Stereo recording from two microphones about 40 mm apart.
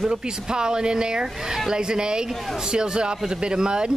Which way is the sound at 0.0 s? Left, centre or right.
Centre.